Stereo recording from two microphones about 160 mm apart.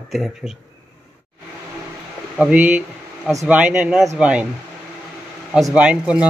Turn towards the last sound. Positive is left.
turn(degrees=-10)  # may be behind; listen again after turning